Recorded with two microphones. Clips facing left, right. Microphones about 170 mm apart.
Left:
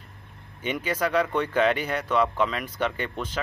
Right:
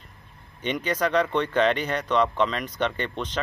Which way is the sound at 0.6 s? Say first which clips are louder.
Right 1 dB; 10° left (ahead or behind).